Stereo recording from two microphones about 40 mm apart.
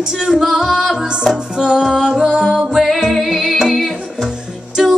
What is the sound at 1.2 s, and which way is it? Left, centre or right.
Music, centre.